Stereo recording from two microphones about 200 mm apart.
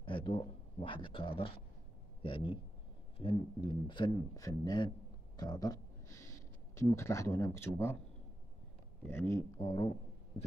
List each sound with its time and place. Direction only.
0.0 s speech: 25° left (ahead or behind)
9.0 s speech: 10° left (ahead or behind)